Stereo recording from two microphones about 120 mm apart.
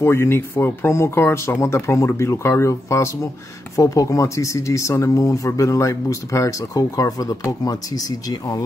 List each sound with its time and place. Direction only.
0.0 s speech: 20° left (ahead or behind)